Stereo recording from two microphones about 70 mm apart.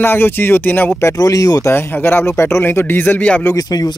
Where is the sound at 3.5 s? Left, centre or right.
Left.